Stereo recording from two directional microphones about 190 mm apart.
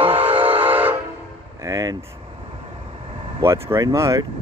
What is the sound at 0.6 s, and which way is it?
Train, 10° right (ahead or behind).